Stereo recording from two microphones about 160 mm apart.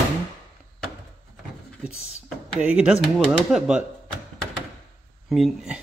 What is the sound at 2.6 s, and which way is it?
Speech, 5° right (ahead or behind).